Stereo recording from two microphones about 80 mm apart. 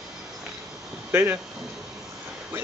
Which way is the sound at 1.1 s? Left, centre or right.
Right.